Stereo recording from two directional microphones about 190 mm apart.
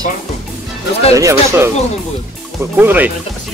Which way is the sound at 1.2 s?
15° right (ahead or behind).